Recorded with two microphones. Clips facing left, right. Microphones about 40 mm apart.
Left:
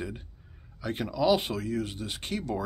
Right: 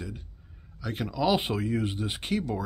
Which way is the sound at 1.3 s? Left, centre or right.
Centre.